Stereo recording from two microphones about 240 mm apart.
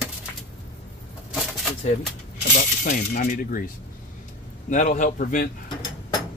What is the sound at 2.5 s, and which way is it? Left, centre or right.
Speech, left.